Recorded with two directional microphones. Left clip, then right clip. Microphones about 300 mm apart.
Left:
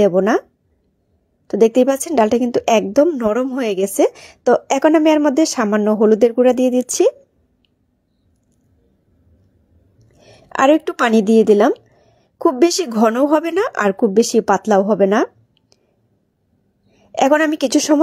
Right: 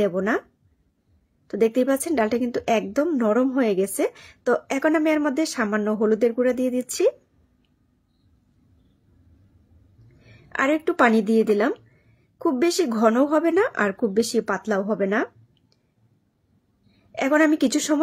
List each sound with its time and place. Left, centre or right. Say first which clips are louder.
0.0 s a woman's voice: left 9 dB; left
1.5 s a woman's voice: left 8 dB; left
10.2 s a woman's voice: left 9 dB; left
17.1 s a woman's voice: left 5 dB; left